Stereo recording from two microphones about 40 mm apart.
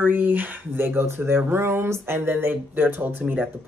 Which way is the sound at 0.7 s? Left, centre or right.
Right.